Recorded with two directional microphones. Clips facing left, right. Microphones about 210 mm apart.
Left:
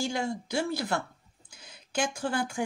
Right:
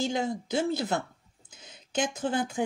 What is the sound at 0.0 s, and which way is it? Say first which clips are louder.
Speech: right 2 dB; 20° right (ahead or behind).